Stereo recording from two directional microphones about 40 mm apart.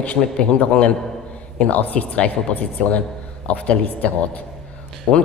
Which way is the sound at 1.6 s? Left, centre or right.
Left.